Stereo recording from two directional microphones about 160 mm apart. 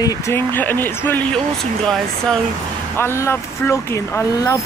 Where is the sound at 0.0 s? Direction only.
15° left (ahead or behind).